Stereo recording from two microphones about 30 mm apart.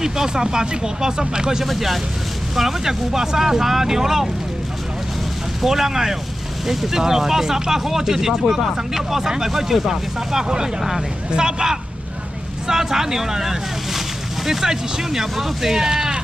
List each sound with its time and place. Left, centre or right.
0.0 s speech: centre
2.5 s speech: centre
5.6 s speech: centre
11.3 s speech: right
12.6 s boat: centre
14.7 s speech: centre
15.7 s speech: right